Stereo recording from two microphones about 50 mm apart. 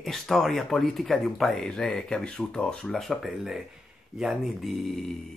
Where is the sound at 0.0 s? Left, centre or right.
Centre.